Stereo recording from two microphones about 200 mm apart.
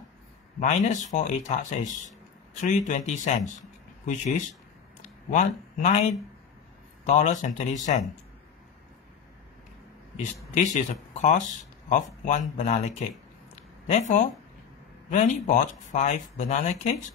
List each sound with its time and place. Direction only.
0.6 s speech: 40° left (ahead or behind)
7.1 s speech: 35° left (ahead or behind)
10.1 s speech: 40° left (ahead or behind)
13.6 s a sound: 35° left (ahead or behind)
15.0 s speech: 40° left (ahead or behind)